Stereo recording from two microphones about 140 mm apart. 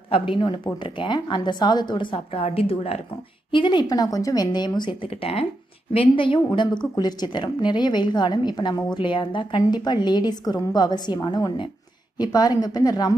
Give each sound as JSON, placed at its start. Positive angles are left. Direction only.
{"t": 0.3, "sound": "a woman's voice", "side_deg": 35}
{"t": 3.5, "sound": "a woman's voice", "side_deg": 35}